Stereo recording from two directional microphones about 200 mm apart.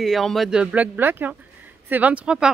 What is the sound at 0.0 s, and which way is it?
Speech, centre (ahead or behind).